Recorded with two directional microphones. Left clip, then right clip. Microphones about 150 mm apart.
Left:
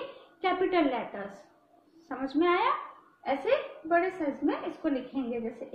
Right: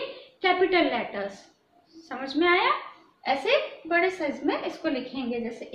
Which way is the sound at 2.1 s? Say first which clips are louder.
Right 4 dB; 25° left (ahead or behind).